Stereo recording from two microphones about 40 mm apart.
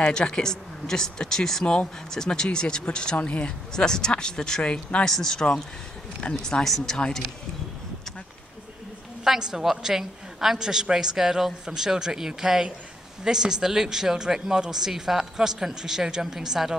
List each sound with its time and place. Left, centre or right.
0.0 s speech: left
3.7 s speech: centre
9.2 s speech: centre